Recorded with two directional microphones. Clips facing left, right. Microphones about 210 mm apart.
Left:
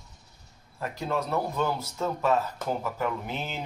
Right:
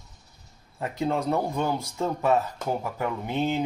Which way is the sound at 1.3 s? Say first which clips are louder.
Right 2 dB; 15° right (ahead or behind).